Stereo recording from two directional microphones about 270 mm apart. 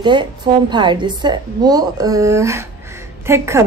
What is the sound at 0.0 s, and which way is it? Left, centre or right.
A woman's voice, centre.